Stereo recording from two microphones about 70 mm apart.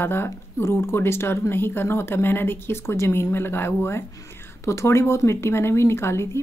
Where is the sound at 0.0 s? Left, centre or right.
Left.